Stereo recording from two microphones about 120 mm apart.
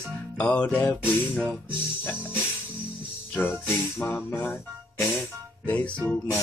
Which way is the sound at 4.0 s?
15° left (ahead or behind).